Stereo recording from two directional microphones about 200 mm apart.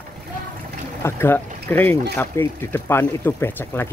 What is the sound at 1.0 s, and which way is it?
Speech, 10° left (ahead or behind).